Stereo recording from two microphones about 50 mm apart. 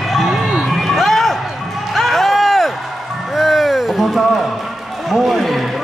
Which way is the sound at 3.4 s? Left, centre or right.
Centre.